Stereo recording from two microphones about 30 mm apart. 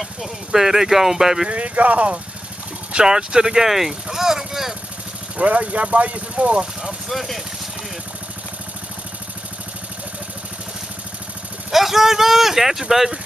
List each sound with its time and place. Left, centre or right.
0.0 s speech: centre
1.5 s speech: right
2.9 s speech: right; by 4.7 s centre
5.4 s speech: right
7.2 s speech: centre
11.7 s speech: centre